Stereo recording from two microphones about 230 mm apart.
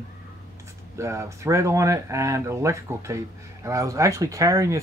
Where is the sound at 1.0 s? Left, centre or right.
Centre.